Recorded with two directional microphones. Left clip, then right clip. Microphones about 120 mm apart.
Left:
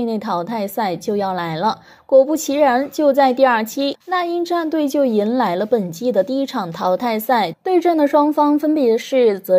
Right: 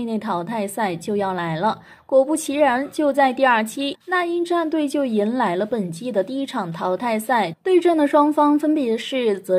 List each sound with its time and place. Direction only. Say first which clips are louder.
0.0 s a woman's voice: left 4 dB; 35° left (ahead or behind)
2.0 s a woman's voice: left 4 dB; 20° left (ahead or behind)
2.5 s a woman's voice: left 3 dB; 35° left (ahead or behind)
2.8 s a woman's voice: left 5 dB; 25° left (ahead or behind)
3.3 s a woman's voice: left 3 dB; 35° left (ahead or behind)
5.1 s a woman's voice: left 3 dB; 35° left (ahead or behind)
7.6 s speech: even; 15° left (ahead or behind)